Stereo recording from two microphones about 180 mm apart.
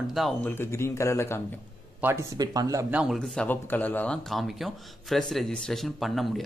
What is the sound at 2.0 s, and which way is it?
Speech, 15° right (ahead or behind).